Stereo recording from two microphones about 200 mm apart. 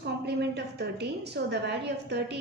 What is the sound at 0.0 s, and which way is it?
A woman's voice, 55° right (ahead or behind).